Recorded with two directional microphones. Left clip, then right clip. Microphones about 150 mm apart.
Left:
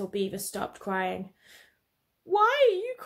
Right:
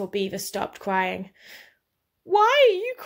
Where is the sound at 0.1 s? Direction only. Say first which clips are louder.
Right 4 dB; 35° right (ahead or behind).